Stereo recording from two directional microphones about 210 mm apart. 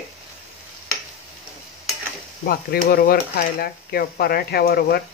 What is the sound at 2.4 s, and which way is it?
Speech, 45° left (ahead or behind).